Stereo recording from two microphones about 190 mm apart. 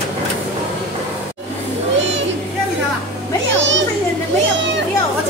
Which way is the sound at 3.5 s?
75° right (ahead or behind).